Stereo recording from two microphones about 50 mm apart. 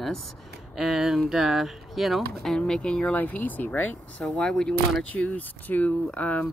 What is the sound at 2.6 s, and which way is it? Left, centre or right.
Speech, centre.